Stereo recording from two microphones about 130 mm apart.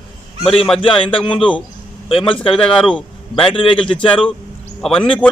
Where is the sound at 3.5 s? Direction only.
40° left (ahead or behind).